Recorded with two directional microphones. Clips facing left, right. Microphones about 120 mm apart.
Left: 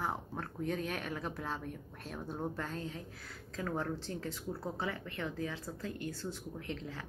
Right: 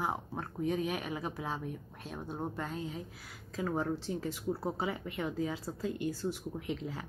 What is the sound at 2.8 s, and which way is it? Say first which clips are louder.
A woman's voice: right 2 dB; 15° right (ahead or behind).